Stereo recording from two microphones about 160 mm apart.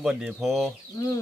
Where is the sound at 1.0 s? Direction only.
25° left (ahead or behind).